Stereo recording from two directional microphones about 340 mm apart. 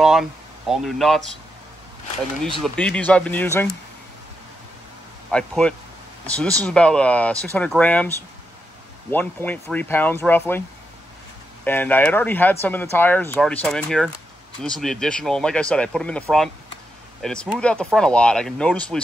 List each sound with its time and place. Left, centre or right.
0.0 s speech: centre
2.6 s speech: centre
5.3 s speech: centre
11.6 s speech: centre